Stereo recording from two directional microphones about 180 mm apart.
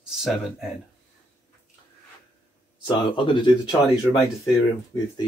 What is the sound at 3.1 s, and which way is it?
Speech, 25° left (ahead or behind).